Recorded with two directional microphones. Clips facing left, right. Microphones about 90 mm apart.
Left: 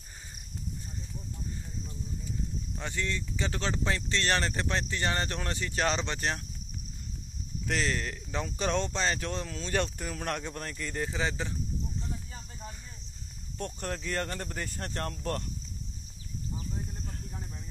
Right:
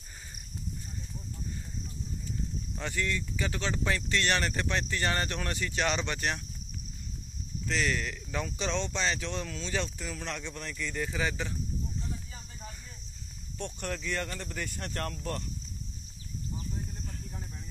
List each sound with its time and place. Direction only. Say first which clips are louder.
2.8 s speech: right 2 dB; 25° left (ahead or behind)
7.8 s speech: even; 35° left (ahead or behind)
8.5 s speech: left 4 dB; 45° left (ahead or behind); by 9.7 s 30° left (ahead or behind)
9.9 s speech: left 3 dB; 50° left (ahead or behind)
11.0 s speech: left 1 dB; 25° left (ahead or behind)
13.6 s speech: left 1 dB; 40° left (ahead or behind)